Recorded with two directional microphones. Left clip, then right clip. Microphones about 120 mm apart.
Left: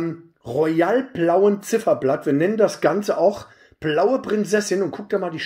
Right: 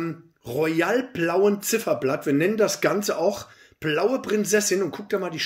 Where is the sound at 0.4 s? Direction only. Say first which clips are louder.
Left 4 dB; 35° left (ahead or behind).